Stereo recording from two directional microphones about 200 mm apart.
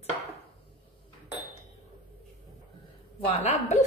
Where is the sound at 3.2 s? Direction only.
30° left (ahead or behind).